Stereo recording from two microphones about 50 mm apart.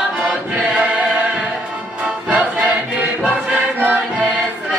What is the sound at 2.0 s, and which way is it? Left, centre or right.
Music, centre.